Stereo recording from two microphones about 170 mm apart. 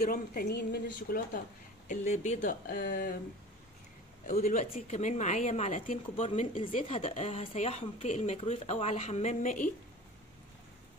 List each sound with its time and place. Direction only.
0.0 s a woman's voice: 60° left (ahead or behind)
1.9 s a woman's voice: 45° left (ahead or behind)
2.6 s a woman's voice: 60° left (ahead or behind)
4.3 s a woman's voice: 45° left (ahead or behind)